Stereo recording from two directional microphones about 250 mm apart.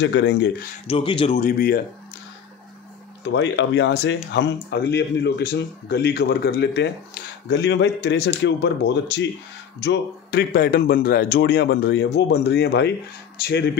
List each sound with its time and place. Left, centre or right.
0.0 s speech: left
0.8 s speech: centre; by 1.8 s left
3.3 s a man's voice: left